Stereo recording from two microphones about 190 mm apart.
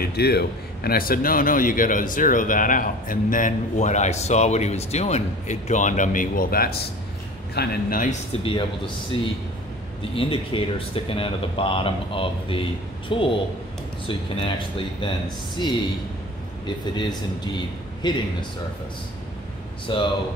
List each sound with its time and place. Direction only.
0.0 s a man's voice: 55° left (ahead or behind)
8.5 s speech: 25° left (ahead or behind)
16.9 s speech: 25° left (ahead or behind)
19.9 s speech: 25° left (ahead or behind)